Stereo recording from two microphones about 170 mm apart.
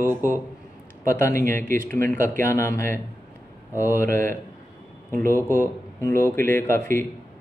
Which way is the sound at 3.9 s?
50° right (ahead or behind).